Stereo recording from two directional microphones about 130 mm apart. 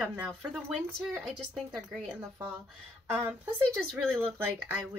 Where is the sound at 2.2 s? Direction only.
10° right (ahead or behind).